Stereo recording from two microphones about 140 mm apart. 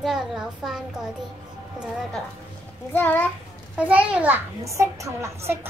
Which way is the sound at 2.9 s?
15° left (ahead or behind).